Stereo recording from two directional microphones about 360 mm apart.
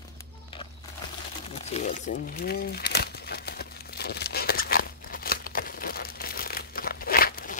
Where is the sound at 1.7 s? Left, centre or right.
Left.